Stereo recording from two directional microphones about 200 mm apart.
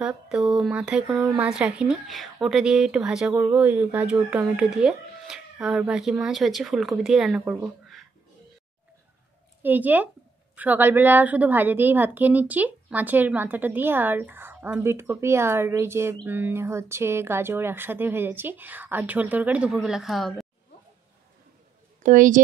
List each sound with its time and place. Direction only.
0.0 s speech: 5° right (ahead or behind)
9.6 s a woman's voice: 10° right (ahead or behind)
22.0 s a woman's voice: 40° right (ahead or behind)